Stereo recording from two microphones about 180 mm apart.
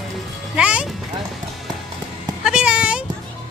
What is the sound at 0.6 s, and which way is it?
Music, 5° right (ahead or behind).